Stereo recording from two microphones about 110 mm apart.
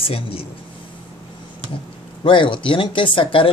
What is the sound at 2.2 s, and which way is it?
Speech, 50° left (ahead or behind).